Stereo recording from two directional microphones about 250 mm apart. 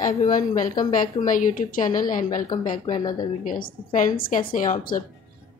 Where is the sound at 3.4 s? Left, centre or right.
Left.